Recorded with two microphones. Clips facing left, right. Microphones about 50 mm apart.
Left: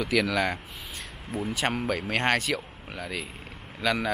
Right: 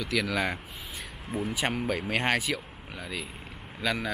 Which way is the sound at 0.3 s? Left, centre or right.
Centre.